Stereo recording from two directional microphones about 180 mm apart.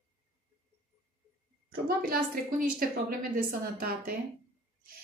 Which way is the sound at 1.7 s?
55° right (ahead or behind).